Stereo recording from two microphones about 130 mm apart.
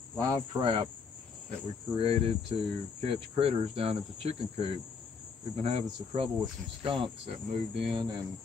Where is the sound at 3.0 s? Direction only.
50° right (ahead or behind).